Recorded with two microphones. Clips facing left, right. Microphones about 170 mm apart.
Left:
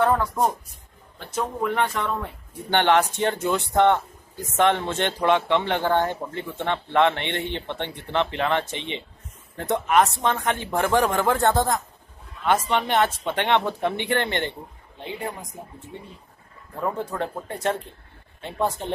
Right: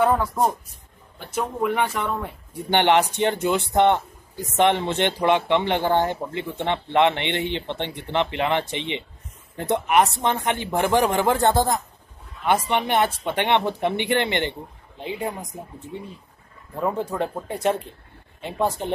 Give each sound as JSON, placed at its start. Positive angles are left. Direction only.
{"t": 0.0, "sound": "speech", "side_deg": -5}
{"t": 8.7, "sound": "speech", "side_deg": -65}
{"t": 9.6, "sound": "speech", "side_deg": -15}
{"t": 16.8, "sound": "speech", "side_deg": -15}